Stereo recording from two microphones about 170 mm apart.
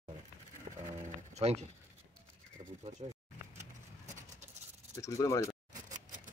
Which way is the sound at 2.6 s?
40° right (ahead or behind).